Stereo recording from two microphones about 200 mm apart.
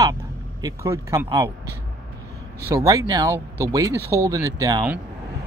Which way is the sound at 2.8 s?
20° right (ahead or behind).